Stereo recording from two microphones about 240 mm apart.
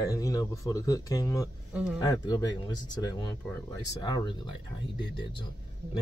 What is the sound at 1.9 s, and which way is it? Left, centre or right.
Speech, centre.